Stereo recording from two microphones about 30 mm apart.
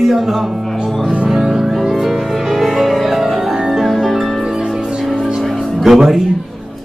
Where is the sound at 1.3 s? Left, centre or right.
Centre.